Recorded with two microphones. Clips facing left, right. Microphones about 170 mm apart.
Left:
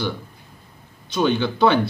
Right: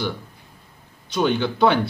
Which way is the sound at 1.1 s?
10° right (ahead or behind).